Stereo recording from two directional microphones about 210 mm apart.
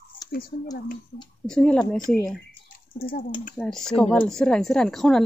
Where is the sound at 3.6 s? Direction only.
Centre (ahead or behind).